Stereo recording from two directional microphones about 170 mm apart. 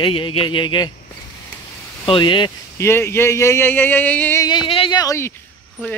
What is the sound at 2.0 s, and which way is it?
Speech, 30° left (ahead or behind).